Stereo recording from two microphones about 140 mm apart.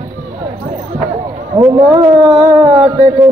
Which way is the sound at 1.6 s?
25° right (ahead or behind).